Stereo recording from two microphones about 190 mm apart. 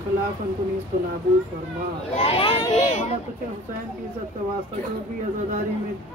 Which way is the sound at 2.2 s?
30° left (ahead or behind).